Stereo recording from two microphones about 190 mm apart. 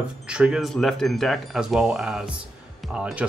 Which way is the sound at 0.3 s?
5° right (ahead or behind).